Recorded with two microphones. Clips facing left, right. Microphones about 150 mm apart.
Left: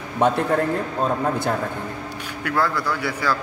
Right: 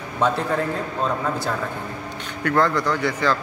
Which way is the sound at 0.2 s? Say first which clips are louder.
Left 2 dB; 55° left (ahead or behind).